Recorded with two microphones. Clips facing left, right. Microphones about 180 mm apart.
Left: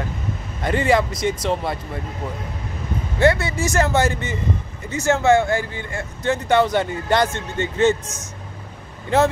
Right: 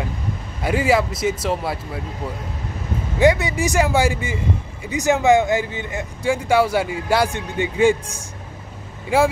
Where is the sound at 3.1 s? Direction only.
15° right (ahead or behind).